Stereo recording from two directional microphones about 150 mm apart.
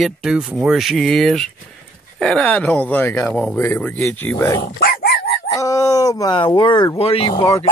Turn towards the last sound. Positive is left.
turn(degrees=25)  # may be behind; listen again after turning